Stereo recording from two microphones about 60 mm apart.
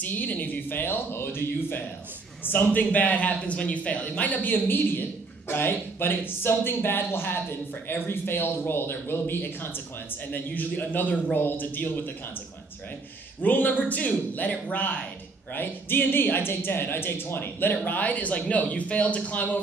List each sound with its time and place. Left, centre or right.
0.0 s a man's voice: left
13.4 s a man's voice: left